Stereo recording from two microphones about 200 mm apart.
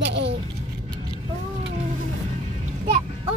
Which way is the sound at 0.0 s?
60° right (ahead or behind).